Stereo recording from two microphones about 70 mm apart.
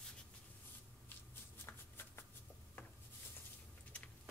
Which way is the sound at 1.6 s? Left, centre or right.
Left.